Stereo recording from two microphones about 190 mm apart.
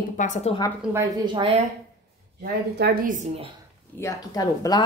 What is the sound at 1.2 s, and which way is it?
Speech, 25° right (ahead or behind).